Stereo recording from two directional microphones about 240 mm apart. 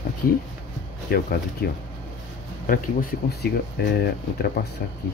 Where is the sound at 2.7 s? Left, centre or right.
Left.